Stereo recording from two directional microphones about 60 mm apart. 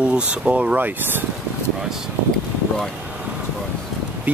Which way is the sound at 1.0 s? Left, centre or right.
Right.